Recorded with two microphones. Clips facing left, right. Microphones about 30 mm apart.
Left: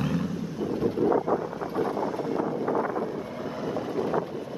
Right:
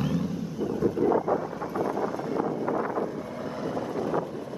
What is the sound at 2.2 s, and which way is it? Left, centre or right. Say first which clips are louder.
Wind noise: even; centre.